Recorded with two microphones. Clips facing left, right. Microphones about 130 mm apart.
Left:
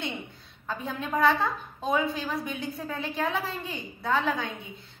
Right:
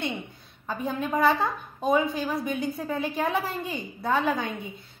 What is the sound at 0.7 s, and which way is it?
A woman's voice, 10° right (ahead or behind).